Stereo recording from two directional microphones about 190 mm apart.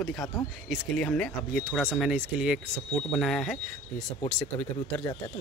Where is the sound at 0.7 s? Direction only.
5° left (ahead or behind).